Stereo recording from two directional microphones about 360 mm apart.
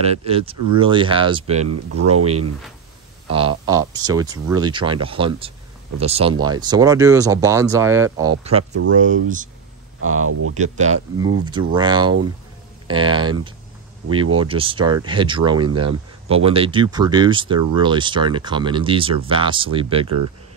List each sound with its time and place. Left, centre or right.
0.0 s speech: centre
3.3 s speech: centre
10.0 s speech: right
11.7 s speech: centre